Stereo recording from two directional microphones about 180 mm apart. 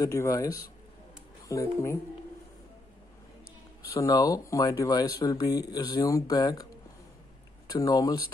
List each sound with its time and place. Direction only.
0.0 s speech: 20° left (ahead or behind)
3.9 s speech: 20° left (ahead or behind)